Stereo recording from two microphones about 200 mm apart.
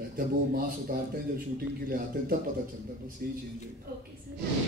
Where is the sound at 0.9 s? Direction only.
45° right (ahead or behind).